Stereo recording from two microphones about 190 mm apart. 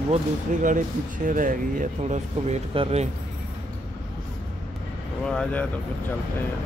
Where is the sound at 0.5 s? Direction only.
40° right (ahead or behind).